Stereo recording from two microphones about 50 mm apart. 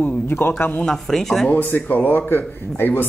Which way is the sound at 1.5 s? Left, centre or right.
Left.